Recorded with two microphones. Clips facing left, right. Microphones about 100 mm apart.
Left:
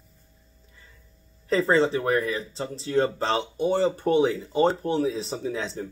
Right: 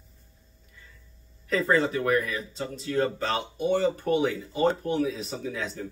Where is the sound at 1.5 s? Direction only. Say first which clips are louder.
Left 3 dB; 30° left (ahead or behind).